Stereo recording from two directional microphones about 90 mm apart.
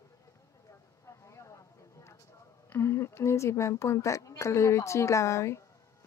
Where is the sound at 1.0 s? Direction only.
35° left (ahead or behind).